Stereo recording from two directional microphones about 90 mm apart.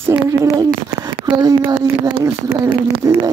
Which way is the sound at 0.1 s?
35° right (ahead or behind).